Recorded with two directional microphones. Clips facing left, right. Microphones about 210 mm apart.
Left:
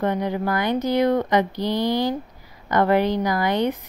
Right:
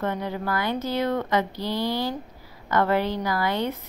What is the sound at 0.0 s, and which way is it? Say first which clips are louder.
A woman's voice: left 5 dB; 15° left (ahead or behind).